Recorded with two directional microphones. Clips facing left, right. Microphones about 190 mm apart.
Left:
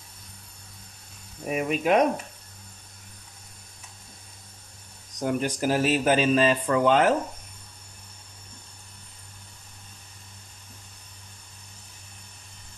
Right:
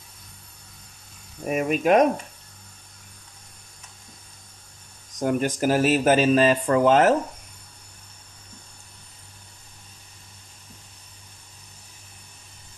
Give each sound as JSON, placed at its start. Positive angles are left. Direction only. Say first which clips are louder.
{"t": 1.5, "sound": "speech", "louder": "right 3 dB", "side_deg": -45}
{"t": 5.2, "sound": "speech", "louder": "right 3 dB", "side_deg": -50}